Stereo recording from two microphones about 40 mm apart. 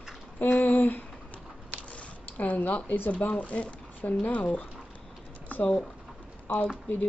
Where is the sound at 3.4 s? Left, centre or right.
Left.